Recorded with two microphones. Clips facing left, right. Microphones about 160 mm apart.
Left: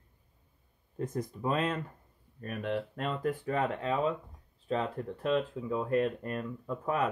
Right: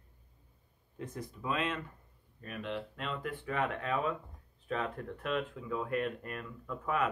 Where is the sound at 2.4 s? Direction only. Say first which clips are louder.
Left 5 dB; 50° left (ahead or behind).